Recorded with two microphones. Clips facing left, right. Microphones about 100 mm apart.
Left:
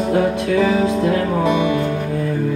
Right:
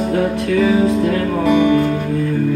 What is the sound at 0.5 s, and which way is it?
Music, 5° right (ahead or behind).